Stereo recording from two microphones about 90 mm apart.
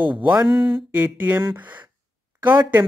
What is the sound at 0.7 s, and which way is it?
Speech, 20° right (ahead or behind).